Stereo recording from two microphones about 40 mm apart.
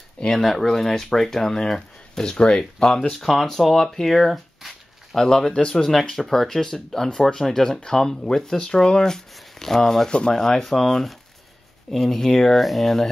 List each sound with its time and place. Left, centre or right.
0.3 s speech: centre
5.1 s speech: centre
5.5 s speech: left
5.8 s speech: centre
7.1 s speech: centre
10.0 s speech: left
10.3 s speech: centre